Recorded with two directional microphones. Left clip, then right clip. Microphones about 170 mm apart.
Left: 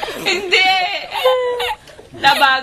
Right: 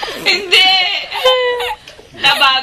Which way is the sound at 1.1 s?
Centre (ahead or behind).